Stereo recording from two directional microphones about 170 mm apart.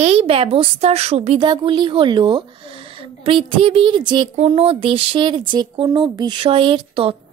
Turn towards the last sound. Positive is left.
turn(degrees=-30)  # may be behind; listen again after turning